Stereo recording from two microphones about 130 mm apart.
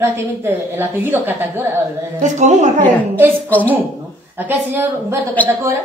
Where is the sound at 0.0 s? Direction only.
15° right (ahead or behind).